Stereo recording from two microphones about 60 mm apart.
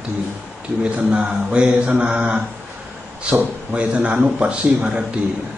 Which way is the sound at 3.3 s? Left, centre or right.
Centre.